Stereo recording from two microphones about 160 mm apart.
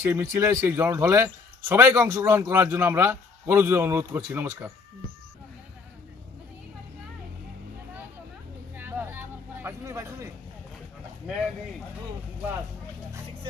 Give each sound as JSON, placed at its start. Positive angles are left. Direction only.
{"t": 0.0, "sound": "a man's voice", "side_deg": -15}
{"t": 8.7, "sound": "vehicle", "side_deg": -10}
{"t": 11.3, "sound": "a man's voice", "side_deg": -5}